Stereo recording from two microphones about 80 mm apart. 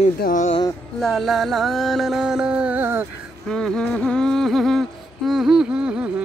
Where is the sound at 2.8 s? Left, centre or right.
Right.